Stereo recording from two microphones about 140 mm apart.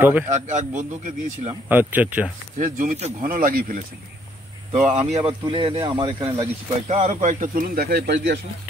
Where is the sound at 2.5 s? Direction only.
70° right (ahead or behind).